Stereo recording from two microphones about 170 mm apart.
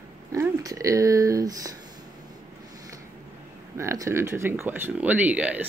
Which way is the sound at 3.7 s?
15° right (ahead or behind).